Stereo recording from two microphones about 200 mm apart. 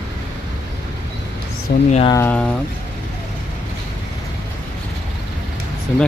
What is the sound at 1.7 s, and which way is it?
Speech, 50° left (ahead or behind).